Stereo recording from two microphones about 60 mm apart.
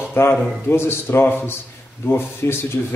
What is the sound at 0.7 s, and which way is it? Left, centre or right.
A man's voice, left.